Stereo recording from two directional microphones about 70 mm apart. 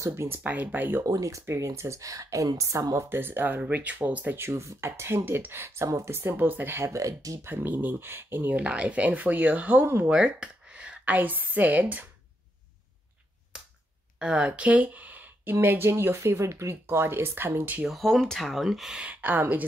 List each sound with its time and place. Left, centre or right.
0.0 s speech: right
0.4 s speech: right
1.0 s speech: right
1.4 s speech: right
3.1 s speech: right
4.4 s speech: right
6.9 s speech: right
7.4 s speech: right
10.1 s speech: centre
14.2 s speech: centre
17.8 s speech: centre
19.0 s speech: right